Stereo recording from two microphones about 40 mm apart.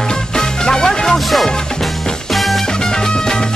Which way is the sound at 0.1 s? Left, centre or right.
Centre.